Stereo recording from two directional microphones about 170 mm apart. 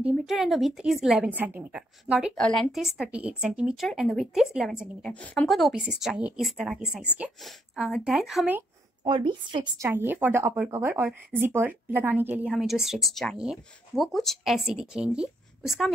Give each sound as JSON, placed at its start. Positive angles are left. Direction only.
{"t": 0.0, "sound": "a woman's voice", "side_deg": 0}
{"t": 9.0, "sound": "a woman's voice", "side_deg": -30}
{"t": 9.8, "sound": "a woman's voice", "side_deg": -10}